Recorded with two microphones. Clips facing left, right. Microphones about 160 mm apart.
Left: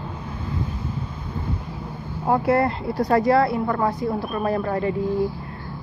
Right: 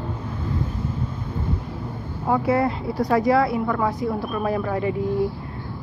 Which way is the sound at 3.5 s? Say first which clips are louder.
Even; 30° left (ahead or behind).